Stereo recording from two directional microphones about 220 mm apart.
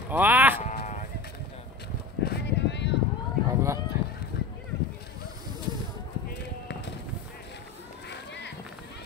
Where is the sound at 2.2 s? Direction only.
50° left (ahead or behind).